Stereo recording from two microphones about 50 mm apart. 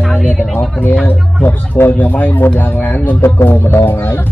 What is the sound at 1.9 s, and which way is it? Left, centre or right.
Speech, left.